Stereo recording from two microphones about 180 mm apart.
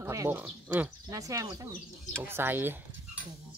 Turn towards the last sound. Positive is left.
turn(degrees=-10)  # may be behind; listen again after turning